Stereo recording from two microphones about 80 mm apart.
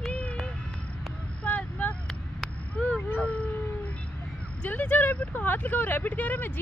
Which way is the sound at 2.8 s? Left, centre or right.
Centre.